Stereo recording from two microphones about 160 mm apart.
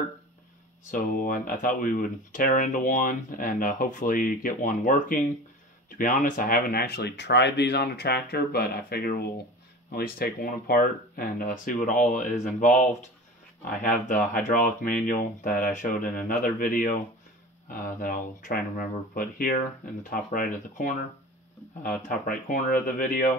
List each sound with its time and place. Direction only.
0.9 s speech: 60° left (ahead or behind)